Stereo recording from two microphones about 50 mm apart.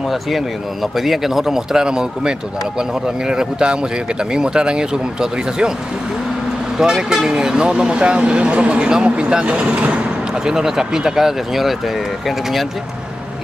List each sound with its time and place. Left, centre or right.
0.9 s a man's voice: centre
6.8 s a man's voice: centre
10.4 s a man's voice: centre